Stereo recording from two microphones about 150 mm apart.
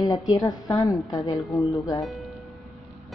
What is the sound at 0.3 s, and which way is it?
A woman's voice, 25° left (ahead or behind).